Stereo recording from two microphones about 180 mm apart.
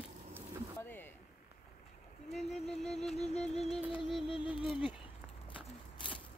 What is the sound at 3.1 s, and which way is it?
Music, 35° left (ahead or behind).